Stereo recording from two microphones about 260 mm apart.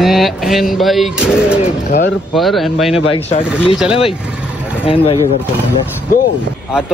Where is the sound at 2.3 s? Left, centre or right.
Centre.